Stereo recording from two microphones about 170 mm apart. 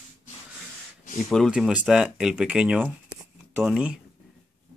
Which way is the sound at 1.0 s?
50° left (ahead or behind).